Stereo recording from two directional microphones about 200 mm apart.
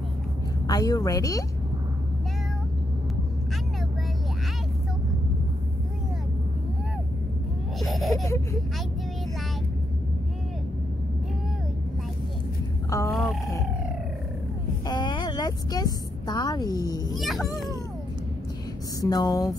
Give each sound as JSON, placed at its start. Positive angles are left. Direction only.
{"t": 0.7, "sound": "a woman's voice", "side_deg": 20}
{"t": 7.8, "sound": "a sound", "side_deg": 0}
{"t": 13.1, "sound": "a sound", "side_deg": 0}
{"t": 14.9, "sound": "a woman's voice", "side_deg": 20}
{"t": 17.1, "sound": "a child's voice", "side_deg": 0}
{"t": 18.9, "sound": "speech", "side_deg": 20}